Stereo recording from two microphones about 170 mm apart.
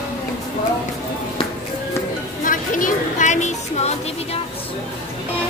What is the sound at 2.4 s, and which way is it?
Music, 50° left (ahead or behind).